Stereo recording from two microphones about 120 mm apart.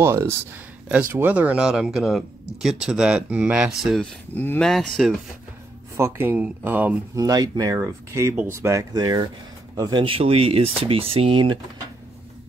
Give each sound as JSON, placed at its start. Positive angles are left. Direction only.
{"t": 0.0, "sound": "speech", "side_deg": -20}
{"t": 0.8, "sound": "speech", "side_deg": -10}
{"t": 5.9, "sound": "speech", "side_deg": -20}
{"t": 7.2, "sound": "speech", "side_deg": -30}
{"t": 10.0, "sound": "speech", "side_deg": -50}